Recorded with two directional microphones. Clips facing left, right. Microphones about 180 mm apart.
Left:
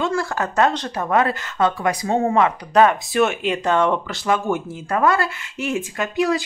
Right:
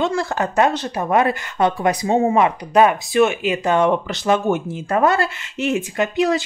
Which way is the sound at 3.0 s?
Centre (ahead or behind).